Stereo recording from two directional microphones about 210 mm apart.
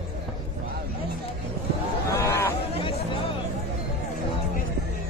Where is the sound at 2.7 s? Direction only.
25° left (ahead or behind).